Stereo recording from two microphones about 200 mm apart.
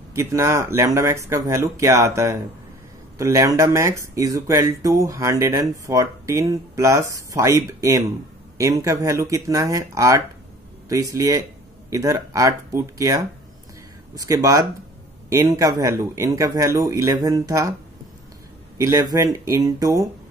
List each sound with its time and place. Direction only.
0.1 s speech: 15° right (ahead or behind)
18.8 s speech: 15° right (ahead or behind)